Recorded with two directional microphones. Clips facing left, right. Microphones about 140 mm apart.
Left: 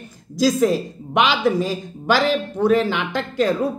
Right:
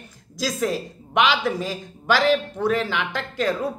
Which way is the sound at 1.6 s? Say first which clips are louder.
Left 6 dB; 30° left (ahead or behind).